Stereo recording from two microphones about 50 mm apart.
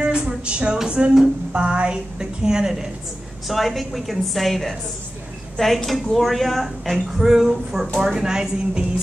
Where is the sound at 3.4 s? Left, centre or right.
Centre.